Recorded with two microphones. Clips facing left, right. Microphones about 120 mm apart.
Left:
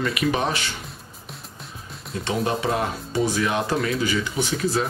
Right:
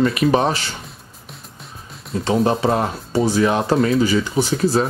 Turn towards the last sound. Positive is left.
turn(degrees=-35)  # may be behind; listen again after turning